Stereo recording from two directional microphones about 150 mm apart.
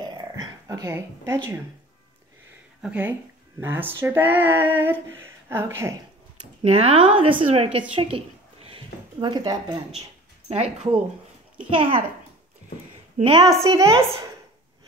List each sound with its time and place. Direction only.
0.0 s dog: 25° right (ahead or behind)
2.8 s speech: 10° right (ahead or behind)
6.6 s a woman's voice: 45° right (ahead or behind)
8.6 s a sound: 35° right (ahead or behind)
10.5 s a woman's voice: 45° right (ahead or behind)
13.2 s a woman's voice: 35° right (ahead or behind)
13.6 s a woman's voice: 20° right (ahead or behind)